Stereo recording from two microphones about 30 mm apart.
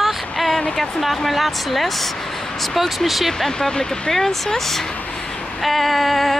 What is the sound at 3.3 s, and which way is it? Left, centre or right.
Speech, centre.